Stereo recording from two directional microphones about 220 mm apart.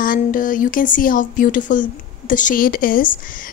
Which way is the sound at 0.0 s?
40° left (ahead or behind).